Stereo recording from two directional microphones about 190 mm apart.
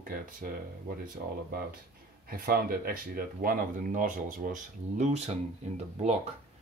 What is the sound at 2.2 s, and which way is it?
Speech, 50° right (ahead or behind).